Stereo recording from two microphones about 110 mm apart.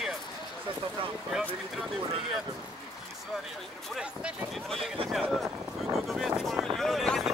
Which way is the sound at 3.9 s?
Centre (ahead or behind).